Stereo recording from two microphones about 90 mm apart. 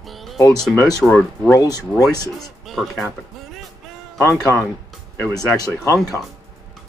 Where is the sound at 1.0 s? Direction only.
10° left (ahead or behind).